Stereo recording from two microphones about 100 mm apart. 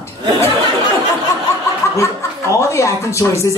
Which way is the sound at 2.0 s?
30° left (ahead or behind).